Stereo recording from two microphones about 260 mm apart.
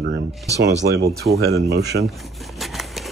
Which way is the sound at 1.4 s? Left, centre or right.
Right.